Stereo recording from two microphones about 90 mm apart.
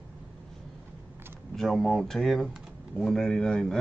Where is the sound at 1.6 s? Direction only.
Centre (ahead or behind).